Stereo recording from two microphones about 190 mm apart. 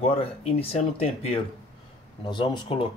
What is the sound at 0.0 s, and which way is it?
Speech, 30° left (ahead or behind).